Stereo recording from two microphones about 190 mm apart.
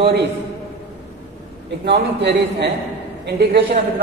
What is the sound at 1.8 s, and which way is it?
A man's voice, 60° right (ahead or behind).